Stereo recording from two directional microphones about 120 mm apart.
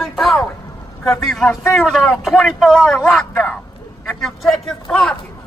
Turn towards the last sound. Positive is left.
turn(degrees=5)  # may be behind; listen again after turning